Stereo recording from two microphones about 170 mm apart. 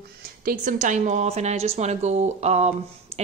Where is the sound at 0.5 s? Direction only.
50° right (ahead or behind).